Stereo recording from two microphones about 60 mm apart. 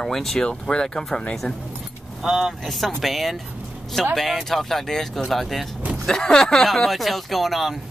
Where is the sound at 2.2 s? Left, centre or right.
Centre.